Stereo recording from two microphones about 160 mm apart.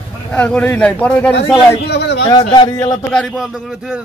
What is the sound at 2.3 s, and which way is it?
Speech, 25° left (ahead or behind).